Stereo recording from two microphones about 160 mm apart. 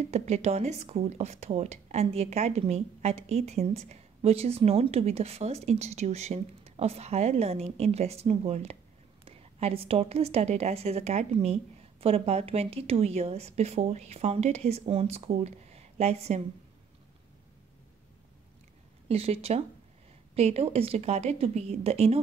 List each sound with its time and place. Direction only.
0.1 s speech: 45° right (ahead or behind)
19.0 s speech: 40° right (ahead or behind)